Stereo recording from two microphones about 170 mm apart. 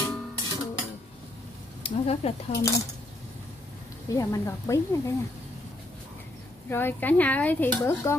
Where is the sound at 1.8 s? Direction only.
35° left (ahead or behind).